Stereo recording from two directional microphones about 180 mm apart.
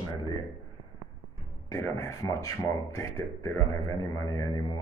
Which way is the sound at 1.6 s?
15° left (ahead or behind).